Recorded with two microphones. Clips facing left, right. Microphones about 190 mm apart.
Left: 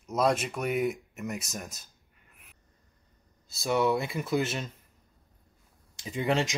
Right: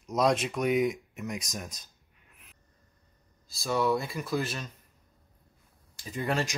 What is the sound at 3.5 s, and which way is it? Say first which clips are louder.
Speech: left 1 dB; 25° left (ahead or behind).